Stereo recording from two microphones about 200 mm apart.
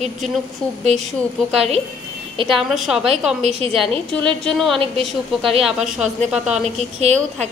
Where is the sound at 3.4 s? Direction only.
30° right (ahead or behind).